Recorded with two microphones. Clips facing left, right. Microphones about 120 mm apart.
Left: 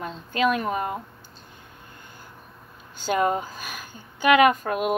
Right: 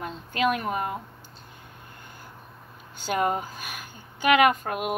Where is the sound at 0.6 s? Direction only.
40° left (ahead or behind).